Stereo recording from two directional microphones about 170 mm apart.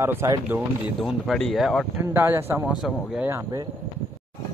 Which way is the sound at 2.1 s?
10° right (ahead or behind).